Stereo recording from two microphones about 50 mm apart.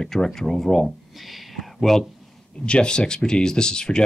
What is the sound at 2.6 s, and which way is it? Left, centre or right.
Speech, centre.